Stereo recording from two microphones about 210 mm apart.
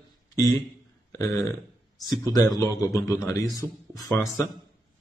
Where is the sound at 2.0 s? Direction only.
20° left (ahead or behind).